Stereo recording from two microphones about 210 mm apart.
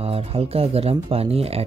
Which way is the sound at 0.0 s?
30° right (ahead or behind).